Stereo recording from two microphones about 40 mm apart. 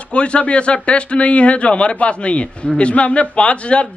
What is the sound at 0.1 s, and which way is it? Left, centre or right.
A man's voice, left.